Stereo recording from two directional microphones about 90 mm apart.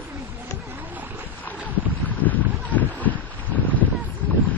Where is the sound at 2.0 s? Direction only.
20° left (ahead or behind).